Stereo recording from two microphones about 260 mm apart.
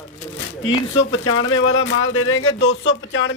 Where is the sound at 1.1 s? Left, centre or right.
Left.